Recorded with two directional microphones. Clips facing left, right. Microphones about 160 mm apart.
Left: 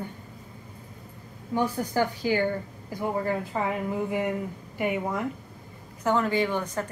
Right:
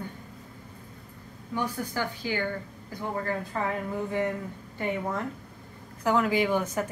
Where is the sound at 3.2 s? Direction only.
15° left (ahead or behind).